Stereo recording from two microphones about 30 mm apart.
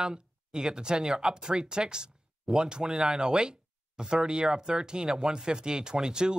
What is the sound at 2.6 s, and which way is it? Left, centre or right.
Speech, right.